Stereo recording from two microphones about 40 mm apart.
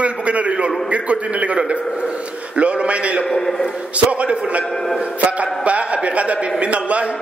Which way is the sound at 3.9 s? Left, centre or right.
Right.